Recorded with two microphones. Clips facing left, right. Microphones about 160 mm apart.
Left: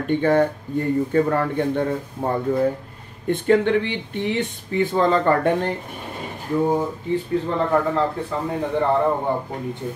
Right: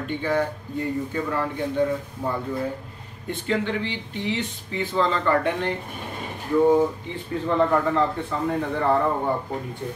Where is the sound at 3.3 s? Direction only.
55° left (ahead or behind).